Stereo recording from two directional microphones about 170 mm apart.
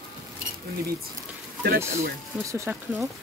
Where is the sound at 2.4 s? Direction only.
15° right (ahead or behind).